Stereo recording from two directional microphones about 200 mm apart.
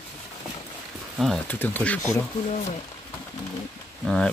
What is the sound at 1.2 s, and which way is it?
Speech, 5° left (ahead or behind).